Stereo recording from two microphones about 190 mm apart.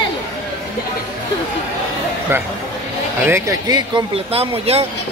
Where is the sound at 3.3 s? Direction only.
20° right (ahead or behind).